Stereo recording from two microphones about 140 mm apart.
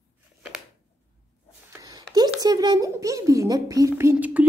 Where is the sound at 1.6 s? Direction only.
25° right (ahead or behind).